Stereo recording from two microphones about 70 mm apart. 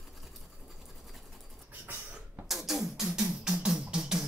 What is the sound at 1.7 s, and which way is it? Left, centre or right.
Beatboxing, right.